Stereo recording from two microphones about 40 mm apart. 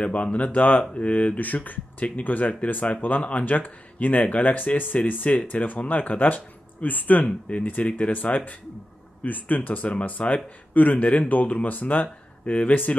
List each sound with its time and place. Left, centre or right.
0.0 s a man's voice: left
7.2 s speech: left
7.6 s a man's voice: left